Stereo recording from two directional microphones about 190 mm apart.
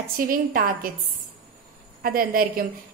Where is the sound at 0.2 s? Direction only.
50° right (ahead or behind).